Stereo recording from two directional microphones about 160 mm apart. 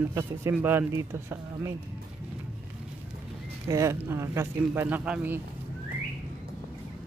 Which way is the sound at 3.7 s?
20° right (ahead or behind).